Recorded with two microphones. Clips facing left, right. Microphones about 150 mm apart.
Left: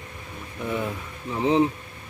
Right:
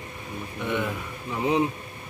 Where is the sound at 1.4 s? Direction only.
30° left (ahead or behind).